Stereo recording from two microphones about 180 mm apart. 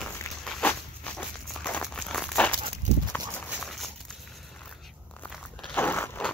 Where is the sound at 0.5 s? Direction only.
5° left (ahead or behind).